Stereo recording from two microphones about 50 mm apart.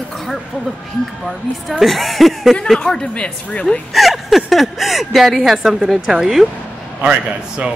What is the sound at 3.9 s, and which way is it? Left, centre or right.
A woman's voice, centre.